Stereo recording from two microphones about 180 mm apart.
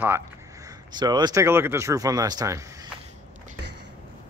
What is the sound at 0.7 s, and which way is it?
Speech, 25° right (ahead or behind).